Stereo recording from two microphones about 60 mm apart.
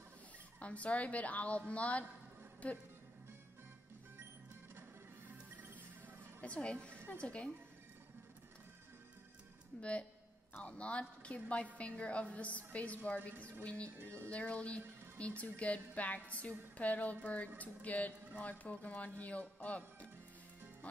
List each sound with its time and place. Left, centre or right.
0.6 s speech: left
6.4 s speech: centre
9.8 s speech: left